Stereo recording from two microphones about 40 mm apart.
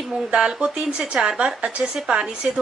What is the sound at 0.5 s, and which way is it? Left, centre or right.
A woman's voice, right.